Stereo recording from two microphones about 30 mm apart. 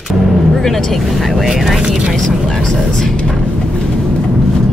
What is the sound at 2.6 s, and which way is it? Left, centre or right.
Music, centre.